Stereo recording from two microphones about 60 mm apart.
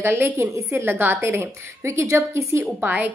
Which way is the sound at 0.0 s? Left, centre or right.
Right.